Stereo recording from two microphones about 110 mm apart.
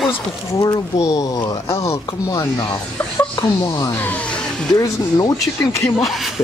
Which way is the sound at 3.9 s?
15° left (ahead or behind).